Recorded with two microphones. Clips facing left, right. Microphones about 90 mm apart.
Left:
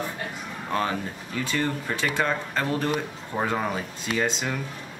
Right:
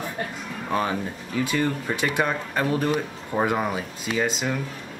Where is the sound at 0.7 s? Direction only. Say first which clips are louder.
Right 2 dB; 15° right (ahead or behind).